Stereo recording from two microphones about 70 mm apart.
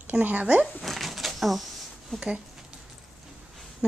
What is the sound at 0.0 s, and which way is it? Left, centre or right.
Speech, right.